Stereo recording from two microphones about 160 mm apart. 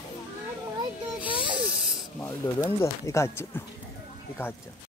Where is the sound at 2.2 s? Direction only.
15° left (ahead or behind).